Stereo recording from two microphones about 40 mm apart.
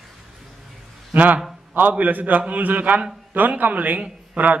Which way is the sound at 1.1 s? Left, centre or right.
Right.